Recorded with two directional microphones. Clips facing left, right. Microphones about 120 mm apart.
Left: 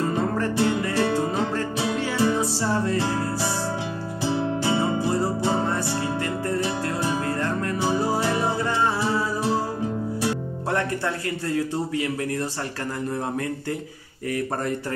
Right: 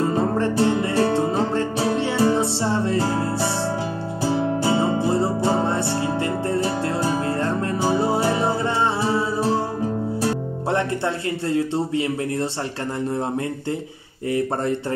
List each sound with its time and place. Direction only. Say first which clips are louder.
0.0 s music: right 3 dB; 25° right (ahead or behind)
4.2 s music: right 3 dB; 35° right (ahead or behind)
10.7 s speech: right 3 dB; 25° right (ahead or behind)
14.3 s speech: right 4 dB; 25° right (ahead or behind)